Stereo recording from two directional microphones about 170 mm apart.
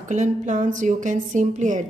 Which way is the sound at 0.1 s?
45° right (ahead or behind).